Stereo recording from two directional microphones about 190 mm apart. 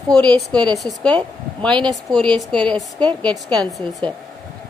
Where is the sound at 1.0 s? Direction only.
5° left (ahead or behind).